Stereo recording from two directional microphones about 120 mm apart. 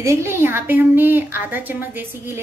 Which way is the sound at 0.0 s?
25° right (ahead or behind).